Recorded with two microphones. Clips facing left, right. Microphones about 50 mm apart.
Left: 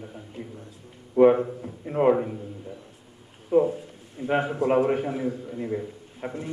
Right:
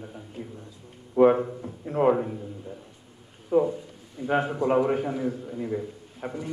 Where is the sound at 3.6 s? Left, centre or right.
Left.